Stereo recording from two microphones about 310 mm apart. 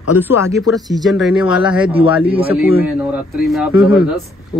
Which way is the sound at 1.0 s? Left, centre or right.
Centre.